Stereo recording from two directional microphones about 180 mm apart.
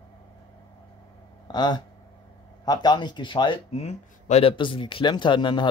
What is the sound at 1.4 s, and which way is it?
Speech, 25° left (ahead or behind).